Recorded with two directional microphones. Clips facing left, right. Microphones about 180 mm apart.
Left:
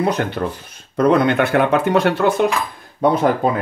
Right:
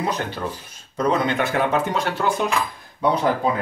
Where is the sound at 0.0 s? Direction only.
60° left (ahead or behind).